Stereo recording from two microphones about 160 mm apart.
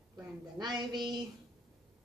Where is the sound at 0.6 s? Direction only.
25° right (ahead or behind).